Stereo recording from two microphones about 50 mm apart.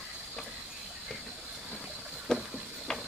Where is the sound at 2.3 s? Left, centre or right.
Centre.